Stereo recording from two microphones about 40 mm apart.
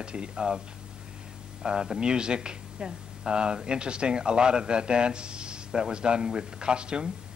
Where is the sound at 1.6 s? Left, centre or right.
Centre.